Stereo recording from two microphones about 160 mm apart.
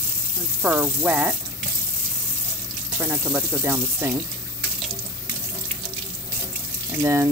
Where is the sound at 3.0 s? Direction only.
10° right (ahead or behind).